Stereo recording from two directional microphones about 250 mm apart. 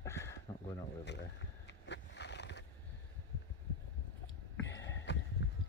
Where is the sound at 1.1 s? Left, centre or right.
Left.